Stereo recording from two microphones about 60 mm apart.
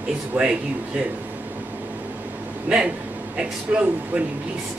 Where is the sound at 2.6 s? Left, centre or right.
Centre.